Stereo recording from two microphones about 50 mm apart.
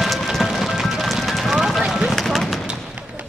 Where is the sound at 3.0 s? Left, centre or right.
Right.